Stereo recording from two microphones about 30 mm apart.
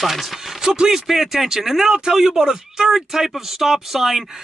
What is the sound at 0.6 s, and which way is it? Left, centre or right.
Speech, centre.